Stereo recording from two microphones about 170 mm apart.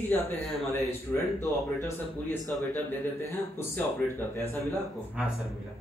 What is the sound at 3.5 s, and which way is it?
Speech, 15° left (ahead or behind).